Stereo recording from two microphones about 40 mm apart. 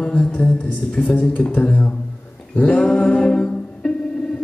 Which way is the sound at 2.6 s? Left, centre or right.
Left.